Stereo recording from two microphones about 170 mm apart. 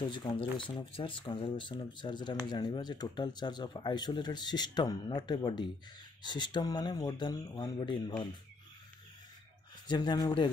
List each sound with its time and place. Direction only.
0.1 s speech: 30° left (ahead or behind)
9.8 s speech: 25° left (ahead or behind)